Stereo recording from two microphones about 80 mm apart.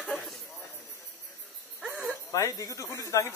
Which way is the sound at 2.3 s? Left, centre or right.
Left.